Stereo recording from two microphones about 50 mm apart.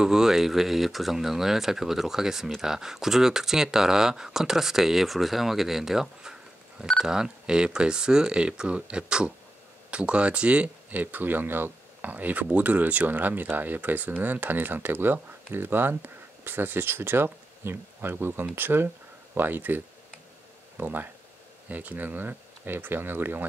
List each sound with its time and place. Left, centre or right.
0.0 s speech: centre; by 23.4 s right